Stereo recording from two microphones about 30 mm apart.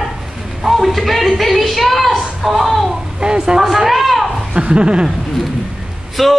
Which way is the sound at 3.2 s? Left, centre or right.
Right.